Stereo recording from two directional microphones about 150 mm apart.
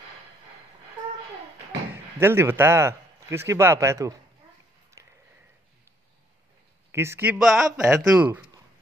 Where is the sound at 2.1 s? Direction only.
15° right (ahead or behind).